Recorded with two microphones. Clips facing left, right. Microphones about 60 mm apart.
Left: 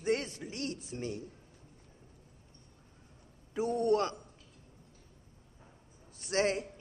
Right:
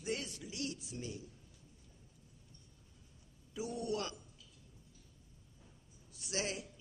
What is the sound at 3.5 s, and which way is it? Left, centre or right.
Speech, left.